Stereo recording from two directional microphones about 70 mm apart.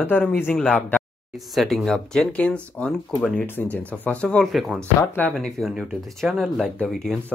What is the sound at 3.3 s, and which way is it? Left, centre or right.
Speech, left.